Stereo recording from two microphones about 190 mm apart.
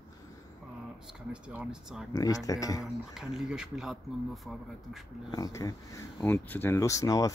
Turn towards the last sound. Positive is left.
turn(degrees=20)  # may be behind; listen again after turning